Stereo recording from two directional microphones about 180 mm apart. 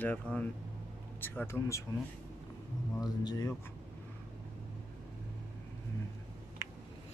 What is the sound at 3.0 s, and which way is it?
Speech, 20° left (ahead or behind).